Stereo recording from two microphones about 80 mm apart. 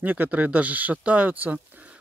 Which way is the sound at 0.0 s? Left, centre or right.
Right.